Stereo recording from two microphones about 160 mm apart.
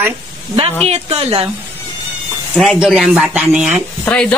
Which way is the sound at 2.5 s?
Centre (ahead or behind).